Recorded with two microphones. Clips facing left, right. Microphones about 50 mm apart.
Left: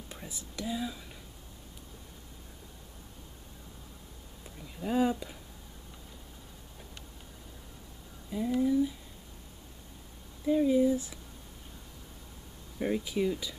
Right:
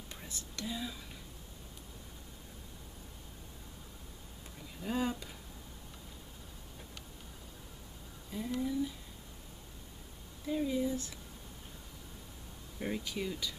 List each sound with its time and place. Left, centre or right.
0.1 s speech: centre
4.7 s speech: centre
8.3 s speech: centre
10.4 s speech: centre
12.7 s speech: centre